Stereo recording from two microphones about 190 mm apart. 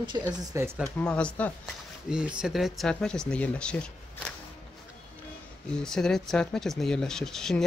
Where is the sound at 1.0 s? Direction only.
5° left (ahead or behind).